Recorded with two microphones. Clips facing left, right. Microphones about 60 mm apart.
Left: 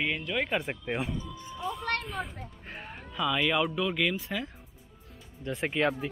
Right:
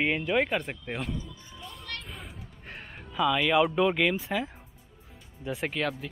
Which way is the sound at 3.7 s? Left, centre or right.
Centre.